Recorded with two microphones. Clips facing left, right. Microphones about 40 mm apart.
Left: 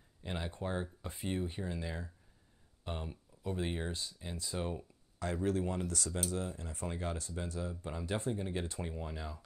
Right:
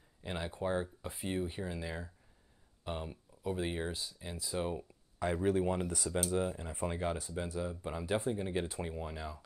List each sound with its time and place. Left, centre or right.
0.2 s speech: centre